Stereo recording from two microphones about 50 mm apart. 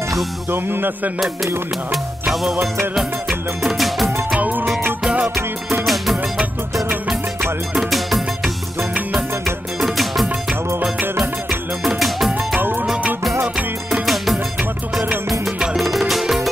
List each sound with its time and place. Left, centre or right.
0.5 s music: right
2.6 s music: centre
4.4 s music: right
5.3 s music: centre
9.8 s music: centre
11.8 s music: centre
12.5 s music: right
14.0 s music: centre